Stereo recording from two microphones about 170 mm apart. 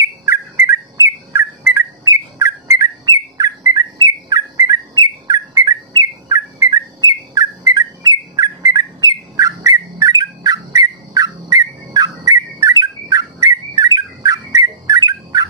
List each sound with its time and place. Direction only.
0.0 s bird: 20° right (ahead or behind)